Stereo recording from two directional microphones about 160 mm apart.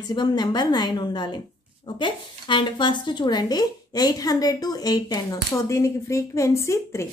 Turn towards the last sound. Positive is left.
turn(degrees=20)  # may be behind; listen again after turning